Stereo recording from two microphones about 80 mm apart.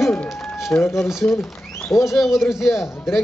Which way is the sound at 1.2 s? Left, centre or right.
Left.